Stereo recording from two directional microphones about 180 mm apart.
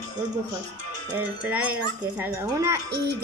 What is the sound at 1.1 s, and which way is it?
A woman's voice, 10° right (ahead or behind).